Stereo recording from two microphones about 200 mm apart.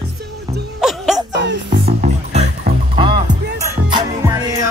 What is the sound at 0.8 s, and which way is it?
Music, centre (ahead or behind).